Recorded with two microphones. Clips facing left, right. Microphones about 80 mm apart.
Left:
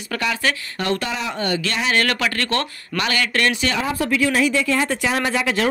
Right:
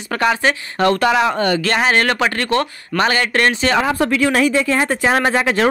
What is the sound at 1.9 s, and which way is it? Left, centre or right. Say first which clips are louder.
Speech: right 4 dB; right.